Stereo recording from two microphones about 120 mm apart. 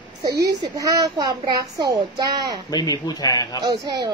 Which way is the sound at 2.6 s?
35° left (ahead or behind).